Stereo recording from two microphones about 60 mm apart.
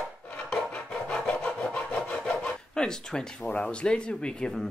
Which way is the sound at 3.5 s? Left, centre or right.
Centre.